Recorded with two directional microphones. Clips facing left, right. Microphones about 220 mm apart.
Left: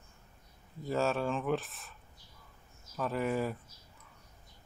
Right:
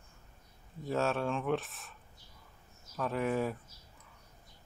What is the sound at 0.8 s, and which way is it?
Speech, centre (ahead or behind).